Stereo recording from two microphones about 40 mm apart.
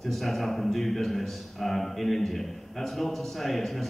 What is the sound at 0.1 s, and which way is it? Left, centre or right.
A man's voice, centre.